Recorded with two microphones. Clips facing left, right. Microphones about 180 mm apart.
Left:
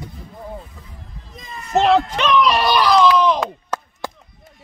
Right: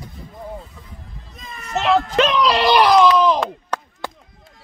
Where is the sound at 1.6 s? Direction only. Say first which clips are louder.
Left 3 dB; 90° right.